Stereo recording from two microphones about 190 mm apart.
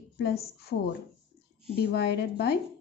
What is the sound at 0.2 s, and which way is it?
Speech, 55° left (ahead or behind).